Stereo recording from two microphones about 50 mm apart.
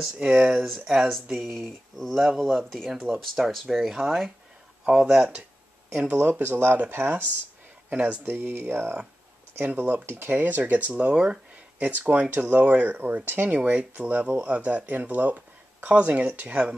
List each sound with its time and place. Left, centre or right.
0.4 s speech: right
0.7 s speech: centre
5.9 s speech: right
6.4 s speech: right
7.9 s speech: right
8.3 s speech: right
13.5 s speech: right